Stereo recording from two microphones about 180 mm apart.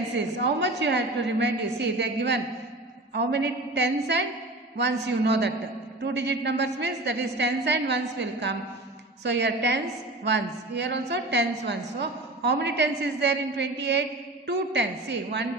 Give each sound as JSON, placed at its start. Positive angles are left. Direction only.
{"t": 0.4, "sound": "a woman's voice", "side_deg": -70}